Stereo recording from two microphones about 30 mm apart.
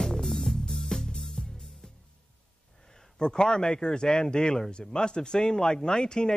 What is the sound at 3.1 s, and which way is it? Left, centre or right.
A man's voice, left.